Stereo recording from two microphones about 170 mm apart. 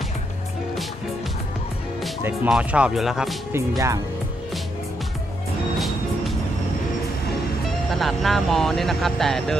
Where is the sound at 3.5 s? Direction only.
20° right (ahead or behind).